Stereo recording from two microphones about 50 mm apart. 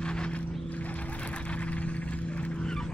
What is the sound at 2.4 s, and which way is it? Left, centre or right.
Vehicle, centre.